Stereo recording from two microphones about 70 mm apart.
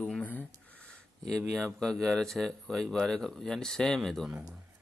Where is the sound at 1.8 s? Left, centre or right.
Centre.